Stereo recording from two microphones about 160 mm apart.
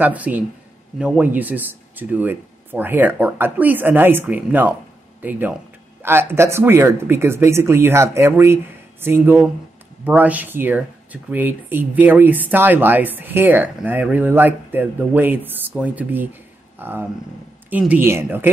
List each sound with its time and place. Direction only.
0.0 s speech: 10° right (ahead or behind)